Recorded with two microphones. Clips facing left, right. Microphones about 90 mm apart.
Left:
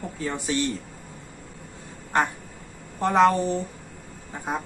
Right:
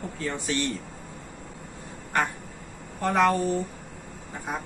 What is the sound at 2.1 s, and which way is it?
A man's voice, 25° left (ahead or behind).